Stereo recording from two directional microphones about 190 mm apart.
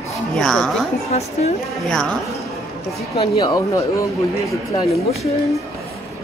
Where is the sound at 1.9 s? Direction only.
5° left (ahead or behind).